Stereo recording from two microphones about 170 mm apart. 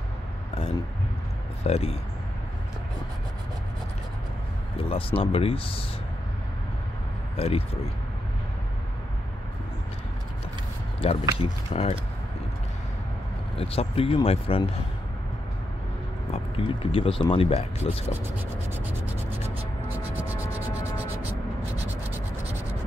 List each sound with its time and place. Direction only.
1.6 s speech: 40° left (ahead or behind)
4.8 s speech: 35° left (ahead or behind)
7.3 s speech: 35° left (ahead or behind)
11.0 s speech: 35° left (ahead or behind)
13.6 s speech: 35° left (ahead or behind)
16.5 s speech: 30° left (ahead or behind)